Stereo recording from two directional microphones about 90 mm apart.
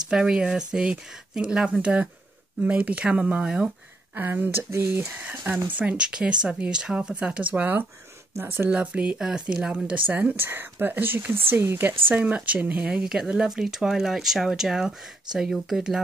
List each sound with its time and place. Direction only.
0.1 s speech: 10° right (ahead or behind)
4.1 s speech: 20° right (ahead or behind)
8.7 s speech: 15° right (ahead or behind)
10.0 s speech: 20° right (ahead or behind)